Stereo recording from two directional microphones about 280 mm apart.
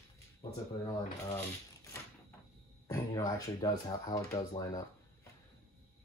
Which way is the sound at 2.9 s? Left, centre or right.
Centre.